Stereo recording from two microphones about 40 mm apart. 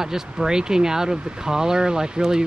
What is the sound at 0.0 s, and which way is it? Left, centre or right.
Speech, centre.